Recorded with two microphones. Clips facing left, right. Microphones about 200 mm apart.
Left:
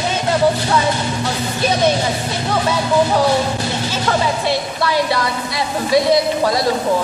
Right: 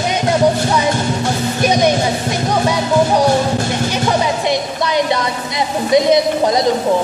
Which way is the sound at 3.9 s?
15° right (ahead or behind).